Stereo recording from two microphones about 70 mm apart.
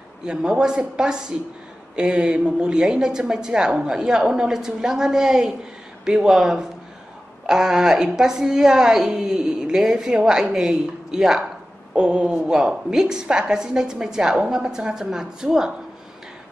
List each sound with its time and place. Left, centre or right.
0.2 s a woman's voice: centre